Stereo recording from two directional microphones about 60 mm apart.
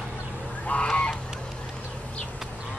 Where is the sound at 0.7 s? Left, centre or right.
Centre.